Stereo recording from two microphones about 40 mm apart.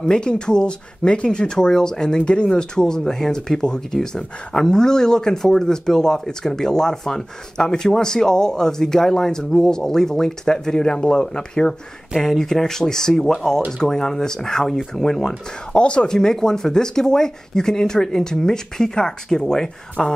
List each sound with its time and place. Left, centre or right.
0.0 s speech: left
15.7 s speech: left
16.1 s speech: centre